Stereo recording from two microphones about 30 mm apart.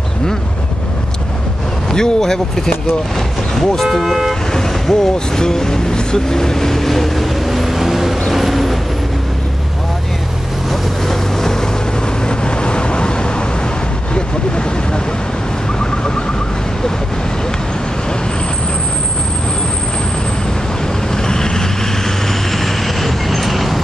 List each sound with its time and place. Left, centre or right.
1.9 s speech: centre
4.0 s speech: centre
4.6 s speech: centre
8.3 s vehicle: centre
10.7 s vehicle: centre
12.3 s vehicle: left
21.1 s vehicle: left
22.6 s vehicle: centre